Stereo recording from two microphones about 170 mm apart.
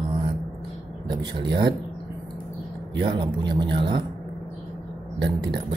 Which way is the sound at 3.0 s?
30° right (ahead or behind).